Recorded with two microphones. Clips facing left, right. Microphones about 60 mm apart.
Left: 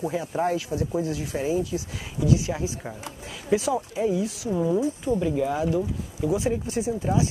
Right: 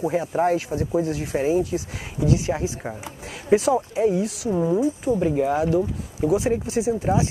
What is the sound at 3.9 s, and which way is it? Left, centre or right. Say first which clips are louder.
Speech: right 4 dB; right.